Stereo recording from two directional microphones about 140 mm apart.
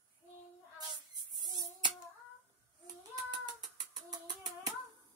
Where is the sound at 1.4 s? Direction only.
30° right (ahead or behind).